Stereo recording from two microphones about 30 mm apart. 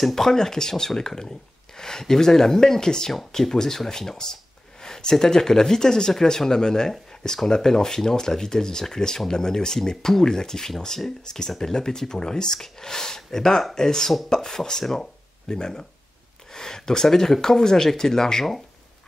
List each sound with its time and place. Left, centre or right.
0.0 s speech: centre
4.8 s a sound: left
5.2 s speech: centre